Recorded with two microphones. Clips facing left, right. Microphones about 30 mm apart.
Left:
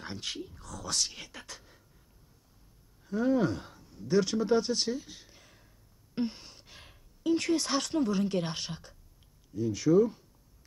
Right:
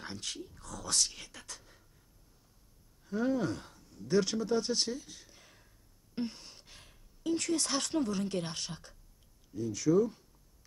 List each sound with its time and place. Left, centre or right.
0.2 s speech: centre
0.6 s speech: centre
3.1 s speech: centre
4.4 s speech: centre
5.4 s a sound: centre
6.1 s gasp: centre
6.8 s a sound: centre
7.9 s speech: centre